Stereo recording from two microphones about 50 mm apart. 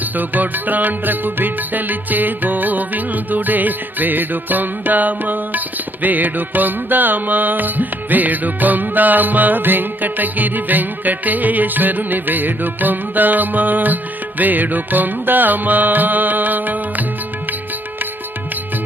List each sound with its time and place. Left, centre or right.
0.2 s music: right